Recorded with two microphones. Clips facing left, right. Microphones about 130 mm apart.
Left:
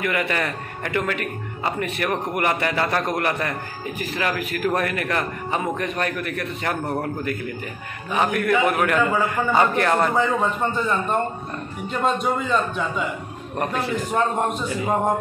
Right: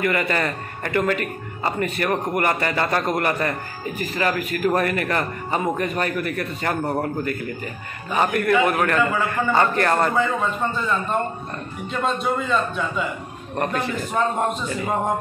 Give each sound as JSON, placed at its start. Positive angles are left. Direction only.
{"t": 0.0, "sound": "a man's voice", "side_deg": 5}
{"t": 9.8, "sound": "speech", "side_deg": 5}
{"t": 10.1, "sound": "a man's voice", "side_deg": 15}
{"t": 13.6, "sound": "a man's voice", "side_deg": 0}